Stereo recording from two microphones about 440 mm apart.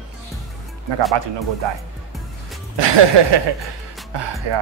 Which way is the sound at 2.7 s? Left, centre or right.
Right.